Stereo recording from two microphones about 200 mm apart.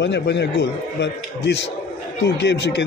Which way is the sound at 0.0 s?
60° left (ahead or behind).